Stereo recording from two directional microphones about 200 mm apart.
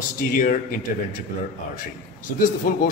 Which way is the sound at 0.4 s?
45° left (ahead or behind).